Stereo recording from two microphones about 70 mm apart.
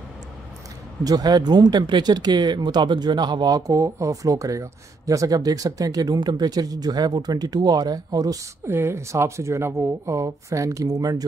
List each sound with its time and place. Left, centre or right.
1.0 s speech: right
8.6 s speech: right